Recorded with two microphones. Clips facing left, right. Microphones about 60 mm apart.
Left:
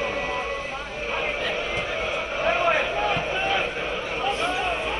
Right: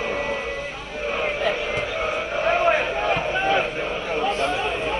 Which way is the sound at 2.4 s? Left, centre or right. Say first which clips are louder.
Right 2 dB; right.